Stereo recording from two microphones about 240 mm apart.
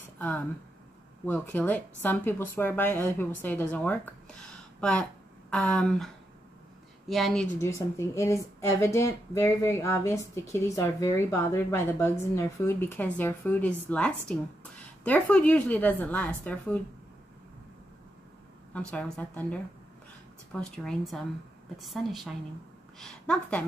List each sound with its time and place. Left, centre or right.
1.2 s a woman's voice: centre
7.1 s a woman's voice: centre
7.6 s a woman's voice: centre
18.7 s a woman's voice: centre